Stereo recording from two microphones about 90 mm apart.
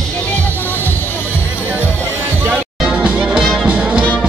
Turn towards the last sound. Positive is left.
turn(degrees=-10)  # may be behind; listen again after turning